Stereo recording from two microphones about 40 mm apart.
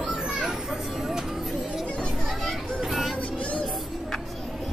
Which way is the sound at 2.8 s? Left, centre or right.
Centre.